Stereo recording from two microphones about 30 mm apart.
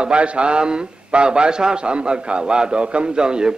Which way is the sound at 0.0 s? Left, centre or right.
Right.